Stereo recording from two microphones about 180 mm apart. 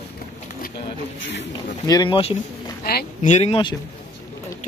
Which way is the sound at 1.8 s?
20° left (ahead or behind).